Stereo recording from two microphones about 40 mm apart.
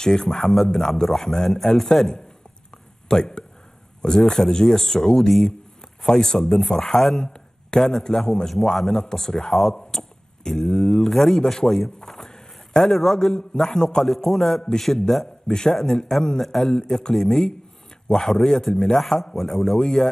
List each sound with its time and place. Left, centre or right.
0.0 s a man's voice: centre
0.4 s a man's voice: centre
3.1 s a man's voice: centre
8.9 s a man's voice: centre
15.5 s a man's voice: centre
16.7 s a man's voice: centre
19.8 s a man's voice: centre